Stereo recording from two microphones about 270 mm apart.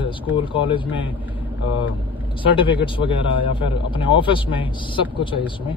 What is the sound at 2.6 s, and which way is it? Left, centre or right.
Speech, centre.